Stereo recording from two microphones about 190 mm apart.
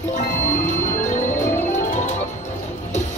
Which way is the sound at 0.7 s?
40° left (ahead or behind).